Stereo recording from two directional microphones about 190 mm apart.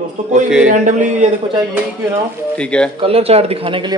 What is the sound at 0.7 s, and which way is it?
Speech, 40° right (ahead or behind).